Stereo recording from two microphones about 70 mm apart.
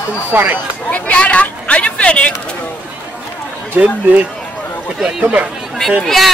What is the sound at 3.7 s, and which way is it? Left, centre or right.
Speech, right.